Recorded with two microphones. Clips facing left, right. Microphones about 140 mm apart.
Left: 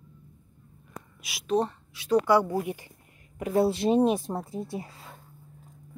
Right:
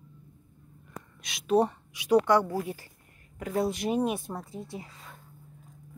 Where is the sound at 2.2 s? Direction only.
10° left (ahead or behind).